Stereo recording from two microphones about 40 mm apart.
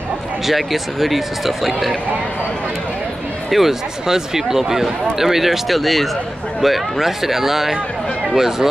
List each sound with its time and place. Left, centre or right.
0.5 s speech: centre
3.4 s speech: centre